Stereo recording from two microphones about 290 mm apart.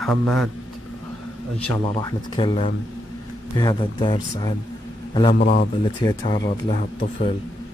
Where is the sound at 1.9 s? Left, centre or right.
Centre.